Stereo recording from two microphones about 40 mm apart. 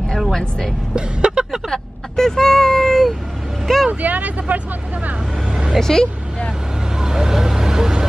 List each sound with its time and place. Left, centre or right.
0.3 s speech: centre
0.9 s speech: right
1.7 s vehicle: centre
3.6 s speech: centre
4.0 s speech: right
5.5 s vehicle: centre
5.8 s speech: centre
7.0 s vehicle: centre